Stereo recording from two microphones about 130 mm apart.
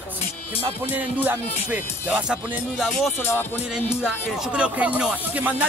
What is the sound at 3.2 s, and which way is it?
Music, 15° left (ahead or behind).